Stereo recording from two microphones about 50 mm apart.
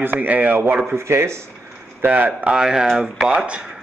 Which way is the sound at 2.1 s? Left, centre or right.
Right.